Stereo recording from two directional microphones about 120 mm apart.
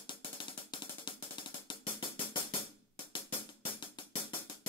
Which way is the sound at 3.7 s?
40° left (ahead or behind).